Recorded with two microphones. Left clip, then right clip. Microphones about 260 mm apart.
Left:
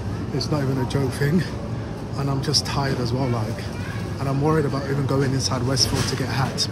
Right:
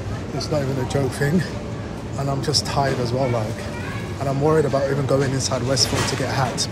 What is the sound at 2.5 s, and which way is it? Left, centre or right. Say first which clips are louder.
Speech: right 3 dB; centre.